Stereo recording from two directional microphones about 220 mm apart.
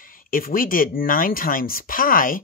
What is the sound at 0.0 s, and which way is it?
Speech, 40° left (ahead or behind).